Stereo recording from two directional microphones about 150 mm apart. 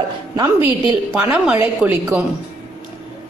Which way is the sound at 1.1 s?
5° right (ahead or behind).